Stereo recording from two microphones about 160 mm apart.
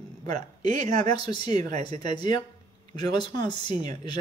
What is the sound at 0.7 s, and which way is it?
Speech, 45° right (ahead or behind).